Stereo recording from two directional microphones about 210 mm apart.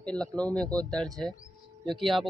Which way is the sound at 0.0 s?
5° left (ahead or behind).